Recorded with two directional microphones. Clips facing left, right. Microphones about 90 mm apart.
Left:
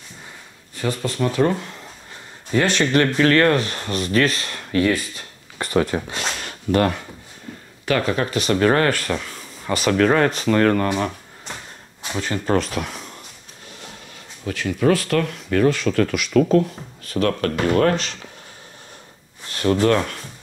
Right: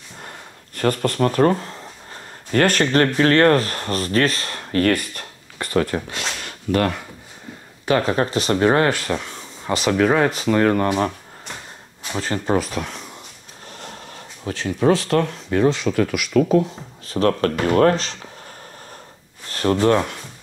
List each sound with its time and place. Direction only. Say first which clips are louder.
0.2 s a sound: right 4 dB; 60° right (ahead or behind); by 1.9 s 35° right (ahead or behind)
2.5 s speech: right 1 dB; 50° right (ahead or behind)
4.8 s speech: right 4 dB; 60° right (ahead or behind)
5.6 s speech: left 1 dB; 15° left (ahead or behind)
8.0 s speech: right 2 dB; 35° right (ahead or behind); by 11.0 s 15° right (ahead or behind)
12.1 s speech: right 1 dB; 35° right (ahead or behind)
12.5 s speech: even; centre (ahead or behind)
13.7 s speech: right 5 dB; 45° right (ahead or behind); by 16.6 s 5° right (ahead or behind)
17.0 s speech: right 2 dB; 30° right (ahead or behind)
19.5 s speech: even; 35° right (ahead or behind)
19.9 s speech: right 1 dB; 20° right (ahead or behind)